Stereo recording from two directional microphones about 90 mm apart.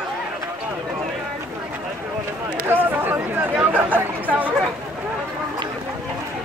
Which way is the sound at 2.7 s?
20° right (ahead or behind).